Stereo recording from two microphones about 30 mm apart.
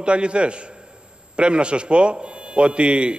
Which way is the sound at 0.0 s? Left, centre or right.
Right.